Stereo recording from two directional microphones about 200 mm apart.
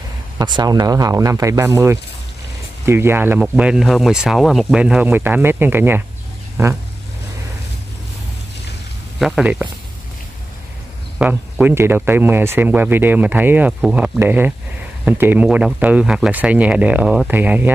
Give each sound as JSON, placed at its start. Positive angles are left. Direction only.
{"t": 0.4, "sound": "speech", "side_deg": -20}
{"t": 9.2, "sound": "speech", "side_deg": -5}
{"t": 11.1, "sound": "speech", "side_deg": -5}